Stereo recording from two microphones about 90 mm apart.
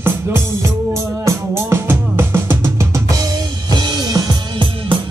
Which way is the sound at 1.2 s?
30° right (ahead or behind).